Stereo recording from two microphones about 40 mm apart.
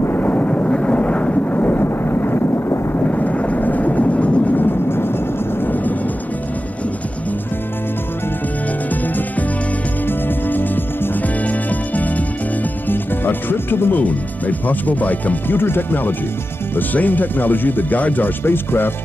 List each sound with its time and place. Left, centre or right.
0.2 s a sound: left
0.5 s vehicle: left
3.0 s vehicle: left
4.6 s vehicle: left
10.0 s music: left
11.4 s music: left
12.8 s music: left
14.0 s speech: left
15.5 s speech: left
18.4 s speech: left